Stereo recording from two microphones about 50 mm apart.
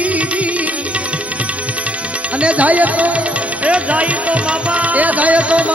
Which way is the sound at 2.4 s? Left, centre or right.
Right.